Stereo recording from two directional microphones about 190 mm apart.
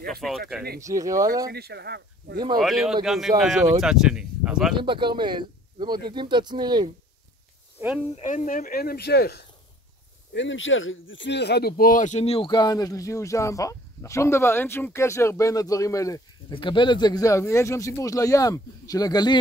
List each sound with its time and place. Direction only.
0.0 s speech: centre (ahead or behind)
0.7 s speech: 15° right (ahead or behind)
1.5 s speech: 60° right (ahead or behind)
2.6 s speech: centre (ahead or behind)
3.5 s speech: 15° right (ahead or behind)
3.8 s speech: 5° right (ahead or behind)
4.7 s speech: 25° right (ahead or behind)
8.2 s speech: 40° left (ahead or behind); by 9.4 s 55° left (ahead or behind)
10.3 s speech: 80° left; by 19.3 s 20° left (ahead or behind)